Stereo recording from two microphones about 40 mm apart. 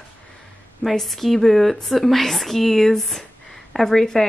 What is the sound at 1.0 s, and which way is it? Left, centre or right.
Speech, centre.